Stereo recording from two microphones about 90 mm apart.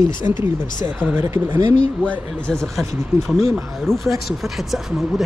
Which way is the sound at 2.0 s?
15° left (ahead or behind).